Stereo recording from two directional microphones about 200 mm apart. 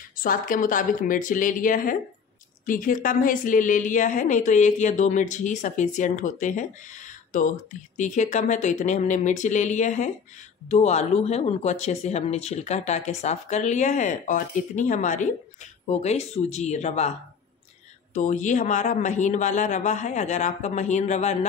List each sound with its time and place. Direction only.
0.2 s speech: 45° left (ahead or behind)
8.0 s speech: 40° left (ahead or behind)
18.1 s speech: 40° left (ahead or behind)